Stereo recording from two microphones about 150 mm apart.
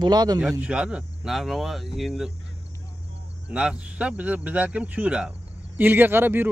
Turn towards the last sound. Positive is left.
turn(degrees=-15)  # may be behind; listen again after turning